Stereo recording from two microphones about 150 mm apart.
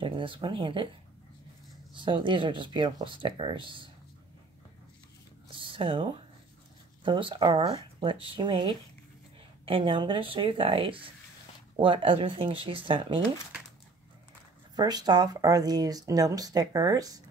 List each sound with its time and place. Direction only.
0.0 s speech: 35° right (ahead or behind)
2.0 s speech: 35° right (ahead or behind)
5.5 s a sound: 35° right (ahead or behind)
7.0 s speech: 35° right (ahead or behind)
14.8 s speech: 25° right (ahead or behind)